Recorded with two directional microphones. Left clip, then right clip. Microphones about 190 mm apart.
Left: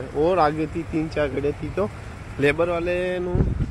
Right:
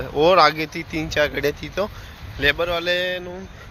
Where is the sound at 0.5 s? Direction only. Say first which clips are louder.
Even; 15° right (ahead or behind).